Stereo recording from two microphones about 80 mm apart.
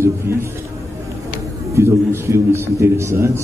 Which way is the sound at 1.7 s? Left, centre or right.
Right.